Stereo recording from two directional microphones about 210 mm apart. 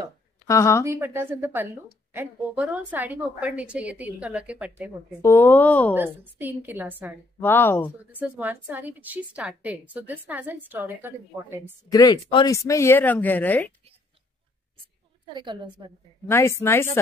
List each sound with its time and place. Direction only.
0.5 s speech: 15° left (ahead or behind)
0.8 s a woman's voice: 10° right (ahead or behind)
5.2 s speech: 10° left (ahead or behind)
5.9 s a woman's voice: 10° right (ahead or behind)
7.3 s speech: 10° left (ahead or behind)
8.1 s a woman's voice: 10° right (ahead or behind)
11.9 s speech: 20° left (ahead or behind)
15.2 s a woman's voice: 20° right (ahead or behind)
16.3 s speech: 10° left (ahead or behind)